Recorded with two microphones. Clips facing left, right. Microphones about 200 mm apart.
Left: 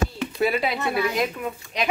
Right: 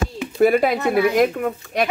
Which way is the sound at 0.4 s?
50° right (ahead or behind).